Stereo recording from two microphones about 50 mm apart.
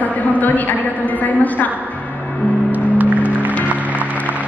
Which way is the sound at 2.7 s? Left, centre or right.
Right.